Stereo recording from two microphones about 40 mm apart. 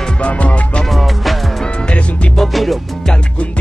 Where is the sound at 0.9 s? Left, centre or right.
Centre.